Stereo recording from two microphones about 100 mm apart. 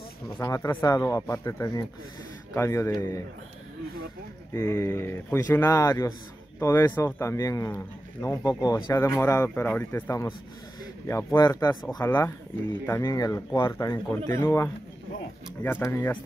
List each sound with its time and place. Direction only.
0.4 s speech: 25° left (ahead or behind)
0.8 s speech: 35° left (ahead or behind)
4.6 s speech: 30° left (ahead or behind)
5.8 s speech: 35° left (ahead or behind)
7.7 s speech: 20° left (ahead or behind)
8.5 s speech: 35° left (ahead or behind)
8.9 s speech: 25° left (ahead or behind)
11.3 s speech: 45° left (ahead or behind)
12.0 s speech: 20° left (ahead or behind)
13.0 s speech: 35° left (ahead or behind)